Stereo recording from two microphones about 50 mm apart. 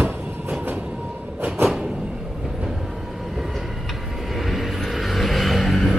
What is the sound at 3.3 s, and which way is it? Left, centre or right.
Vehicle, centre.